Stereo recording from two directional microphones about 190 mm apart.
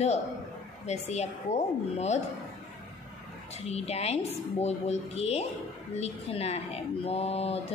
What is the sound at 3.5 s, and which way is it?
Speech, 35° left (ahead or behind).